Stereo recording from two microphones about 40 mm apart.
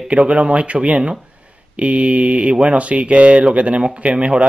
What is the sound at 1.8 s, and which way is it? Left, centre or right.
Speech, right.